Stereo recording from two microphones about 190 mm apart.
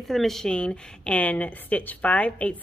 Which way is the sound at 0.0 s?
Centre (ahead or behind).